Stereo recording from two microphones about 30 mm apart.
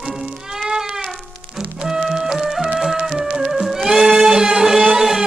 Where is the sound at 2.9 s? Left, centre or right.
Centre.